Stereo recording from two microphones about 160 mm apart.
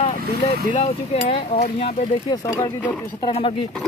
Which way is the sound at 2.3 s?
30° left (ahead or behind).